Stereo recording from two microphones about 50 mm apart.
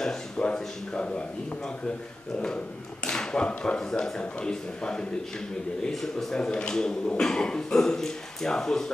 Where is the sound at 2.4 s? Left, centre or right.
Centre.